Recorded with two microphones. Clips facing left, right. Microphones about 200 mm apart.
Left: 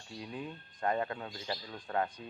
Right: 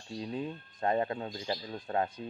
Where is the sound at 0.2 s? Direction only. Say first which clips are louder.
Right 5 dB; 25° right (ahead or behind).